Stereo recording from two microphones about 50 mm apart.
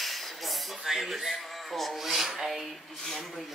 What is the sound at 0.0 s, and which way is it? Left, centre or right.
Speech, centre.